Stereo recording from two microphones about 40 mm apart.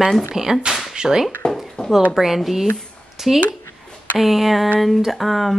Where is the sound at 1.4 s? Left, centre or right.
Centre.